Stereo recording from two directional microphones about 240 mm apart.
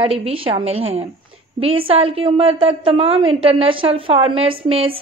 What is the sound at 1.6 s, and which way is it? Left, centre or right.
A woman's voice, right.